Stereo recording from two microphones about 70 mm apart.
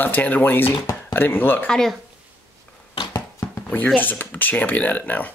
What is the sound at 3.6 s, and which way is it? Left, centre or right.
Speech, centre.